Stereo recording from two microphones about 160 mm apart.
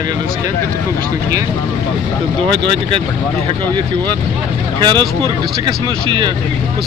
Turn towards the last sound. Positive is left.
turn(degrees=-30)  # may be behind; listen again after turning